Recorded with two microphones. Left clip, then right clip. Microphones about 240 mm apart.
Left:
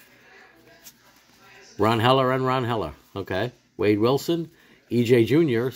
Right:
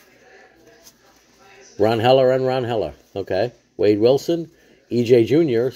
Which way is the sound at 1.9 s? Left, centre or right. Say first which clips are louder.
Right 5 dB; centre.